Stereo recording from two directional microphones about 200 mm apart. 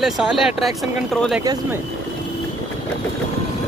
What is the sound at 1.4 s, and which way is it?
Speech, 20° right (ahead or behind).